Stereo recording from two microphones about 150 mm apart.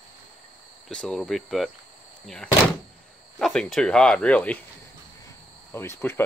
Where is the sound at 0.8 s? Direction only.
5° left (ahead or behind).